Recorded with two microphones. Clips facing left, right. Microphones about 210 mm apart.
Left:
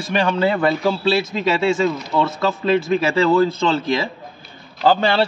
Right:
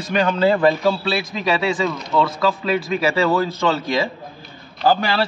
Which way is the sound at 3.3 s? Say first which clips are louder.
Left 3 dB; 25° left (ahead or behind).